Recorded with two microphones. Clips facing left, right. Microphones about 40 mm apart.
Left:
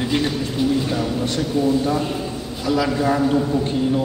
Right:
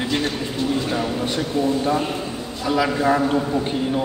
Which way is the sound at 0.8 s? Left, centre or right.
Centre.